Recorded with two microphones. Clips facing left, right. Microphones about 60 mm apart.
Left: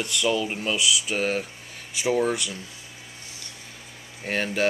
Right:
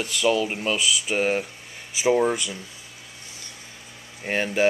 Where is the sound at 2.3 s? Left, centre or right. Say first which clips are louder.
Right 1 dB; centre.